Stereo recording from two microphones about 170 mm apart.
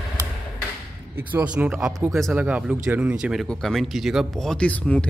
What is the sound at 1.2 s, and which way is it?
Speech, 15° right (ahead or behind).